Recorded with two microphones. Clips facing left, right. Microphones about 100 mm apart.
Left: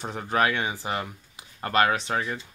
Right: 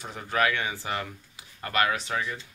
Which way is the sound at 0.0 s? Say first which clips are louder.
Left 2 dB; 35° left (ahead or behind).